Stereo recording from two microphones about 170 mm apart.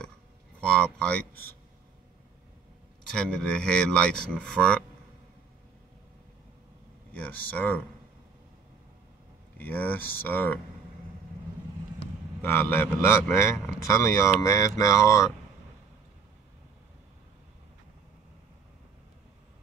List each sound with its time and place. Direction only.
0.6 s speech: 5° left (ahead or behind)
3.1 s speech: 5° left (ahead or behind)
7.1 s a man's voice: 10° left (ahead or behind)
9.6 s a man's voice: 10° left (ahead or behind)
12.4 s a man's voice: 15° left (ahead or behind)